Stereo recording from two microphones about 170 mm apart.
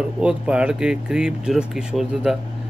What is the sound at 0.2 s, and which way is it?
A man's voice, 5° right (ahead or behind).